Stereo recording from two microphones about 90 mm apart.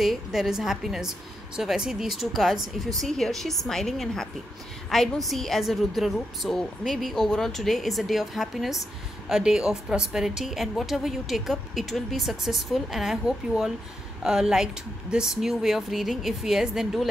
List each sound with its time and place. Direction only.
0.0 s a woman's voice: centre (ahead or behind)